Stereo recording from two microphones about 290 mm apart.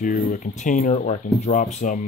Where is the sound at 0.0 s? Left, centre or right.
Left.